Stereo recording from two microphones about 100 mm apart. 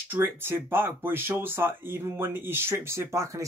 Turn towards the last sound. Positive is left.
turn(degrees=-30)  # may be behind; listen again after turning